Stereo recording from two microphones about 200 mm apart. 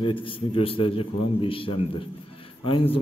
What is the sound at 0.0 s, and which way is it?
A man's voice, 25° left (ahead or behind).